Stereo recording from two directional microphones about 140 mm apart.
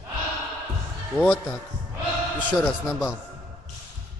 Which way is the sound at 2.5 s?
5° right (ahead or behind).